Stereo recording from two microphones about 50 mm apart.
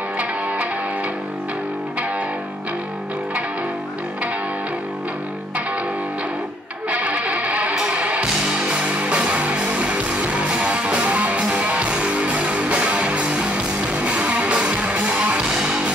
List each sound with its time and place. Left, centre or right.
6.9 s music: right